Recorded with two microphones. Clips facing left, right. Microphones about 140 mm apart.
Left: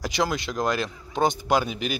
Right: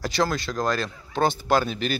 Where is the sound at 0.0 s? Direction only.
15° left (ahead or behind).